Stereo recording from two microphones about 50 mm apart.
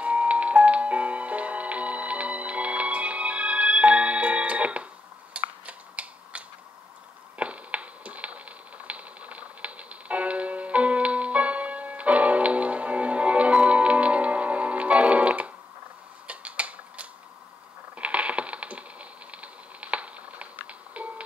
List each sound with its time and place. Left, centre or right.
0.0 s music: right
5.4 s a sound: right
21.0 s music: right